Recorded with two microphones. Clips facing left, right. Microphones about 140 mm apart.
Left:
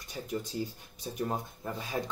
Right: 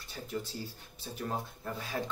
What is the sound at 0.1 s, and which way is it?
Speech, 15° left (ahead or behind).